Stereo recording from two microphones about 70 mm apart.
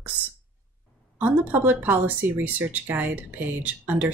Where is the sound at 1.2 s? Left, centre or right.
Right.